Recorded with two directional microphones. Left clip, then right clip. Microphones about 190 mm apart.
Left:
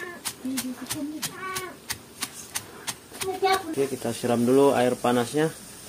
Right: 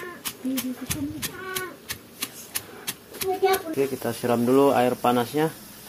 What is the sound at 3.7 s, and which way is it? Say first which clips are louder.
Speech: right 1 dB; centre (ahead or behind).